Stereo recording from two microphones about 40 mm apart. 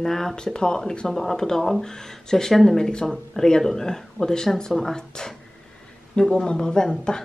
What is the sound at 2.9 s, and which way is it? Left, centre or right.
Speech, centre.